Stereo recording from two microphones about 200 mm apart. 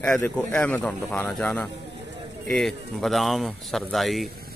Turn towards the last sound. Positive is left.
turn(degrees=0)  # may be behind; listen again after turning